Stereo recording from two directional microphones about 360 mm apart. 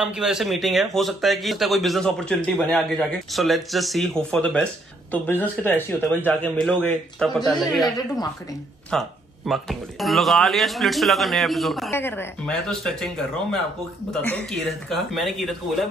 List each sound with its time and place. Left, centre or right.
0.0 s a man's voice: centre
8.9 s a man's voice: centre